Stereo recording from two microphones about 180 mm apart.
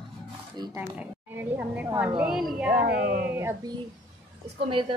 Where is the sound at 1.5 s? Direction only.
10° right (ahead or behind).